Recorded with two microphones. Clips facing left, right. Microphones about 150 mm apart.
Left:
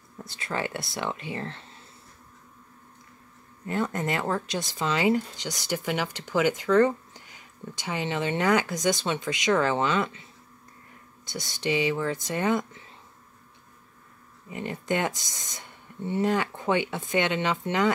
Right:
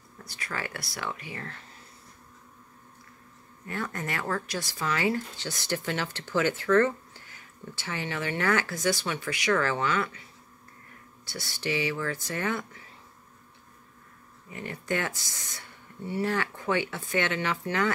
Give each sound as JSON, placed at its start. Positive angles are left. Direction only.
{"t": 0.2, "sound": "speech", "side_deg": 25}
{"t": 3.6, "sound": "speech", "side_deg": 20}
{"t": 11.2, "sound": "speech", "side_deg": 20}
{"t": 14.5, "sound": "speech", "side_deg": 20}